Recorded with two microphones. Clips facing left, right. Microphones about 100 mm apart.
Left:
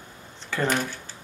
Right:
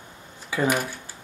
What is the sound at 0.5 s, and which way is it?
Speech, 10° right (ahead or behind).